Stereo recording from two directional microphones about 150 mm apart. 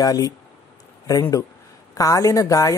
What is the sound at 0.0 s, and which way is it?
Speech, 25° left (ahead or behind).